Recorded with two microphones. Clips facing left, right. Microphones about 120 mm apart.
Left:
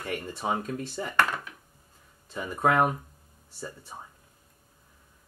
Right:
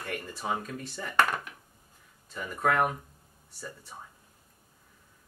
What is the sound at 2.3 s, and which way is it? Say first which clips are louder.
Speech: left 3 dB; 25° left (ahead or behind).